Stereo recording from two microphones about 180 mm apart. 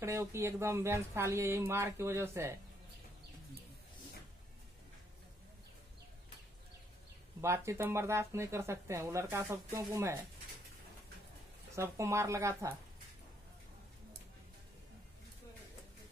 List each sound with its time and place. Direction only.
0.0 s speech: 15° right (ahead or behind)
7.4 s speech: 15° right (ahead or behind)
11.7 s speech: 15° right (ahead or behind)